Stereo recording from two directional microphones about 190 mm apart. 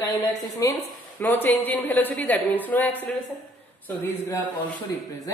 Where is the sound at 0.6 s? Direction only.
20° left (ahead or behind).